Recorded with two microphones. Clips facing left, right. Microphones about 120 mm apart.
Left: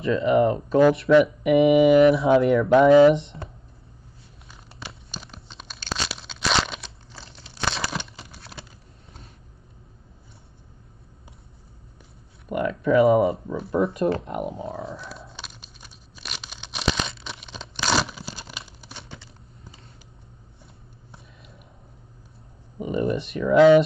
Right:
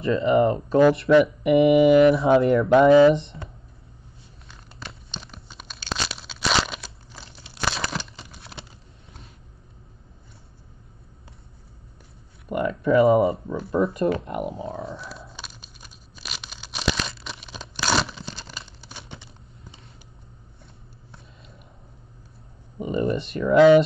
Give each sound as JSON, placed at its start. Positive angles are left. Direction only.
{"t": 0.0, "sound": "speech", "side_deg": 0}
{"t": 4.5, "sound": "crumpling", "side_deg": 5}
{"t": 12.4, "sound": "speech", "side_deg": 0}
{"t": 14.2, "sound": "biting", "side_deg": 0}
{"t": 16.2, "sound": "tearing", "side_deg": 0}
{"t": 19.0, "sound": "computer keyboard", "side_deg": -20}
{"t": 21.4, "sound": "biting", "side_deg": 0}
{"t": 22.8, "sound": "speech", "side_deg": 0}